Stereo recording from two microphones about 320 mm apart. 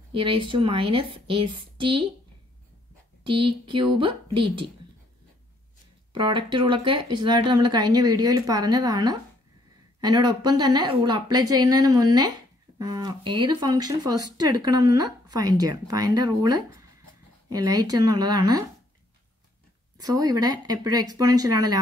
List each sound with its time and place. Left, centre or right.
0.1 s speech: centre
3.3 s speech: centre
6.1 s speech: centre
20.0 s speech: centre